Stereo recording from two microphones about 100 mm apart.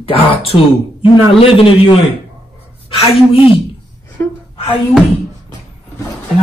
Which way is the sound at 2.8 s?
75° left (ahead or behind).